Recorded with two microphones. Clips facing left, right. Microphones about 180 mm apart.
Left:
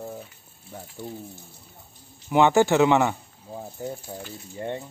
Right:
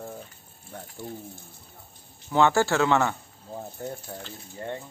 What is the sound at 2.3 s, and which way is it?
Speech, 15° left (ahead or behind).